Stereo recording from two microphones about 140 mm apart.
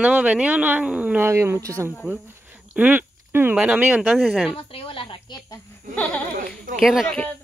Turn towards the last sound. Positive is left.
turn(degrees=0)  # may be behind; listen again after turning